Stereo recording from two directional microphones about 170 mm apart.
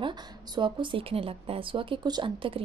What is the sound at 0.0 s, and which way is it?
A woman's voice, 30° right (ahead or behind).